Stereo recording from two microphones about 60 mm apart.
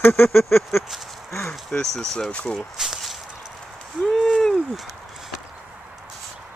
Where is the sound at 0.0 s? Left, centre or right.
Left.